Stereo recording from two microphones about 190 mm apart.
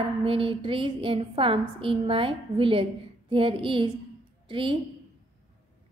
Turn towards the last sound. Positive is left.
turn(degrees=-25)  # may be behind; listen again after turning